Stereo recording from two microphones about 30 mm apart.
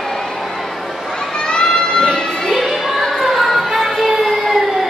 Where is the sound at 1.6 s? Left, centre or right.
Left.